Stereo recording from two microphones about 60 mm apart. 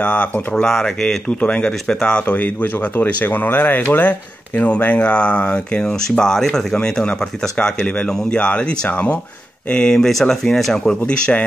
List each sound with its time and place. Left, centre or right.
0.0 s speech: left
0.7 s speech: centre
11.0 s speech: left